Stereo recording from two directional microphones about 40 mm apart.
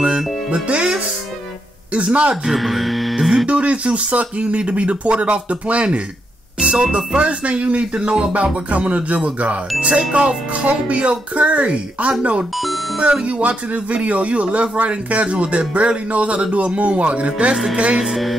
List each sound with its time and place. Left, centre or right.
0.7 s music: centre
2.0 s speech: right
2.4 s mains hum: centre
3.4 s speech: right
12.5 s music: centre
13.0 s speech: right
17.9 s speech: centre